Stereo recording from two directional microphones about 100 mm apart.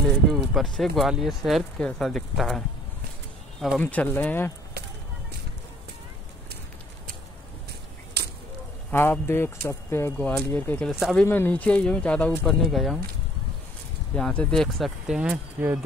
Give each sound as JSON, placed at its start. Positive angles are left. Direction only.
{"t": 0.0, "sound": "speech", "side_deg": 5}
{"t": 3.8, "sound": "speech", "side_deg": 15}
{"t": 8.9, "sound": "speech", "side_deg": 20}
{"t": 10.9, "sound": "speech", "side_deg": 0}
{"t": 11.2, "sound": "speech", "side_deg": 20}
{"t": 12.6, "sound": "speech", "side_deg": 0}
{"t": 14.1, "sound": "speech", "side_deg": 10}
{"t": 15.0, "sound": "speech", "side_deg": -10}